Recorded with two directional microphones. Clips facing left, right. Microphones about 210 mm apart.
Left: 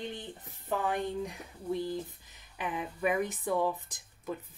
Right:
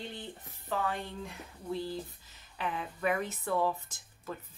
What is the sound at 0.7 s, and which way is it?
Speech, 15° left (ahead or behind).